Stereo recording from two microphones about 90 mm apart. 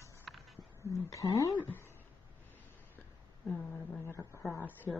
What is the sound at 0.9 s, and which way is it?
Speech, 35° left (ahead or behind).